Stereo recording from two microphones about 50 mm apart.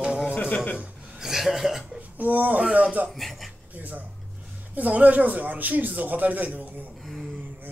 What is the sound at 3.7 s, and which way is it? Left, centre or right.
Speech, right.